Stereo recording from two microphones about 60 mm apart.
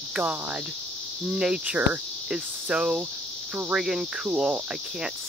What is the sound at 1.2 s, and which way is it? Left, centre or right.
Cricket, centre.